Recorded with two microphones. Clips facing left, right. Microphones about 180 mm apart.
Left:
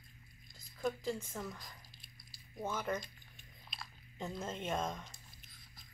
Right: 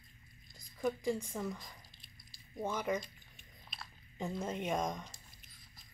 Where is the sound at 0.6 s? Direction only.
10° right (ahead or behind).